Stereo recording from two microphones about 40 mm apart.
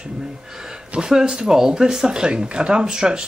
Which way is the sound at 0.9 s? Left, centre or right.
Centre.